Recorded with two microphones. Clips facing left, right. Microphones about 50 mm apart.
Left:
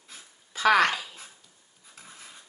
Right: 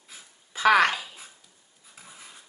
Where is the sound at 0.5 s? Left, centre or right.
Centre.